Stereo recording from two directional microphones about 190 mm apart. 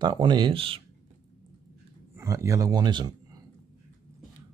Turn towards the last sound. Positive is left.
turn(degrees=-20)  # may be behind; listen again after turning